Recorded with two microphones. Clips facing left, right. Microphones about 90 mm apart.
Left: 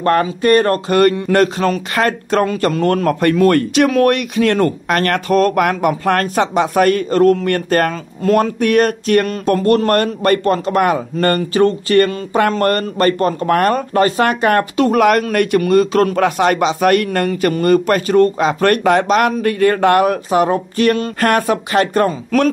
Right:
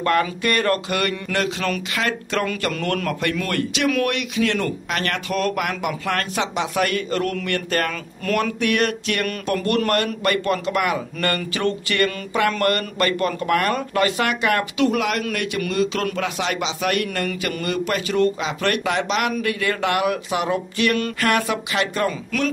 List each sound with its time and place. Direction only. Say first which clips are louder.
0.0 s speech: left 6 dB; 35° left (ahead or behind)
2.4 s speech: left 9 dB; 30° left (ahead or behind)
8.2 s speech: left 8 dB; 30° left (ahead or behind)